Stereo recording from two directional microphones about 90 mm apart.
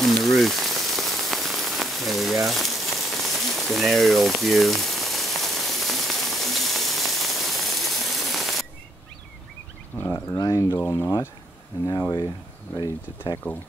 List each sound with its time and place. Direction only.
0.0 s rain on surface: centre (ahead or behind)
9.9 s speech: 25° left (ahead or behind)
10.3 s speech: 40° left (ahead or behind)
10.8 s speech: 25° left (ahead or behind)
13.4 s speech: 20° left (ahead or behind)